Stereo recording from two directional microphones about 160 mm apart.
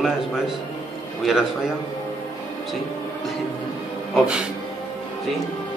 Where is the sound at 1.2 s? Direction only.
5° right (ahead or behind).